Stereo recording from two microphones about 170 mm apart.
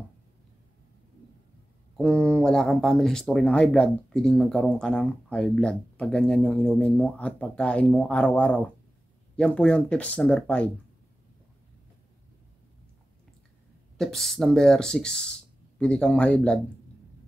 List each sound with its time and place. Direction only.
2.0 s speech: 5° left (ahead or behind)
13.9 s speech: centre (ahead or behind)